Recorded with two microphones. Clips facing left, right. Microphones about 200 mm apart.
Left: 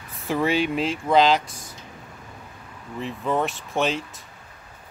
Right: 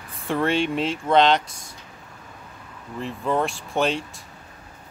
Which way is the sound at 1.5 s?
25° right (ahead or behind).